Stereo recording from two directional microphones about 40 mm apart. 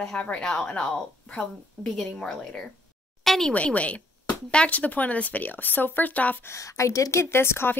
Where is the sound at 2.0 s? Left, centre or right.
Centre.